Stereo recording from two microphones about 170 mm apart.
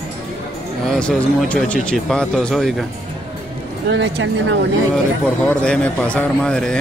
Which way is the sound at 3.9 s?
90° right.